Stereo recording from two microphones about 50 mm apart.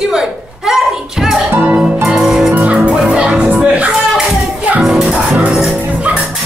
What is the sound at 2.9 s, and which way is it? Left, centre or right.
Music, centre.